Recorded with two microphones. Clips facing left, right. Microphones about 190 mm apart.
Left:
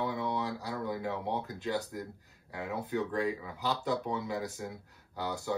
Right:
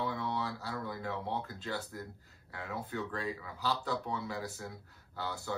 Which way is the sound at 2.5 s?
20° left (ahead or behind).